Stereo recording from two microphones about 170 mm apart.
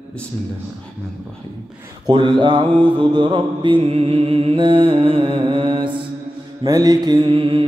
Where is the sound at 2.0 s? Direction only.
25° right (ahead or behind).